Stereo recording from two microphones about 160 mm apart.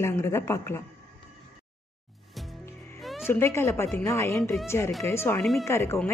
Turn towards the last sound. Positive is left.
turn(degrees=15)  # may be behind; listen again after turning